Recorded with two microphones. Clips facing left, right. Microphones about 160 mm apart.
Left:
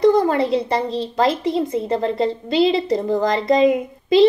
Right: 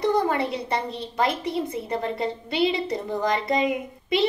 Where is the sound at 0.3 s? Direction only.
30° left (ahead or behind).